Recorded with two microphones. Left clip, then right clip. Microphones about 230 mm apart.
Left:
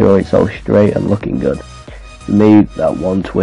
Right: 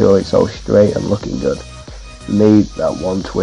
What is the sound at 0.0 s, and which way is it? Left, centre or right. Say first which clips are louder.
Speech: left 1 dB; centre.